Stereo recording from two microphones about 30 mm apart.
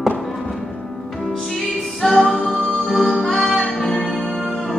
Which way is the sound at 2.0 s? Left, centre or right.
Centre.